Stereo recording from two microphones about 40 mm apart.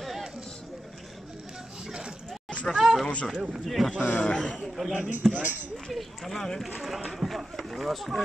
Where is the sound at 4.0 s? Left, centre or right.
Left.